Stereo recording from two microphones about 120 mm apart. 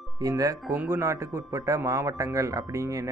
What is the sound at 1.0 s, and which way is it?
Speech, 25° right (ahead or behind).